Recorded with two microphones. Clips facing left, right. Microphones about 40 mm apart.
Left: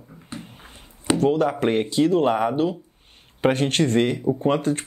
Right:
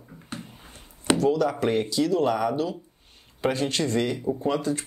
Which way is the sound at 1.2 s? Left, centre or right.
Left.